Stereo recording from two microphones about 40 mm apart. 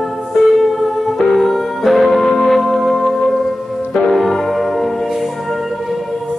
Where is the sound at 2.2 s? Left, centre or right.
Centre.